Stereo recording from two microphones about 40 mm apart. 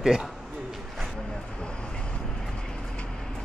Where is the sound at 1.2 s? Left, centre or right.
Left.